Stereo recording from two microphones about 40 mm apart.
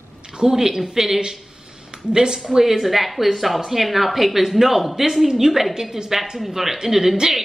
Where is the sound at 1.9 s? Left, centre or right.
Centre.